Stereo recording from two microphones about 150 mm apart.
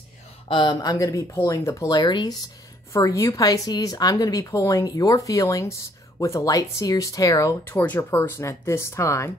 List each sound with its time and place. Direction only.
0.5 s speech: 30° left (ahead or behind)